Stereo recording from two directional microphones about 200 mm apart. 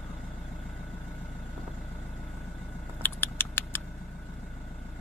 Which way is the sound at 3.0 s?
10° left (ahead or behind).